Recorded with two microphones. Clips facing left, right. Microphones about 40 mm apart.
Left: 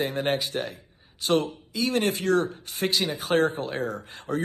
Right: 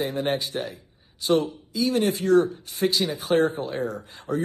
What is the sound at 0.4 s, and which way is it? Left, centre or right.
A man's voice, left.